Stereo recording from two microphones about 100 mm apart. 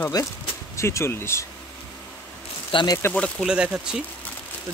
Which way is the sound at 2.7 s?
55° left (ahead or behind).